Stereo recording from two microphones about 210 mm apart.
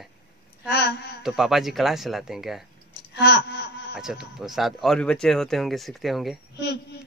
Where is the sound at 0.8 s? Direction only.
50° left (ahead or behind).